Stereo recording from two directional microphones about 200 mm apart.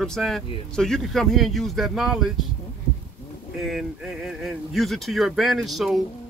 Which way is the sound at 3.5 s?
Centre (ahead or behind).